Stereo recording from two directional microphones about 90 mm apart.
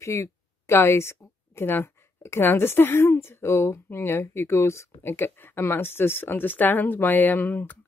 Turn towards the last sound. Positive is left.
turn(degrees=20)  # may be behind; listen again after turning